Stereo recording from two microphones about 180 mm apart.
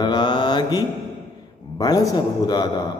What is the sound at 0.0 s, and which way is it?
Mantra, 25° left (ahead or behind).